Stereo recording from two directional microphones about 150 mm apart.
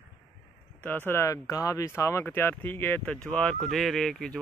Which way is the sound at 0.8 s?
15° left (ahead or behind).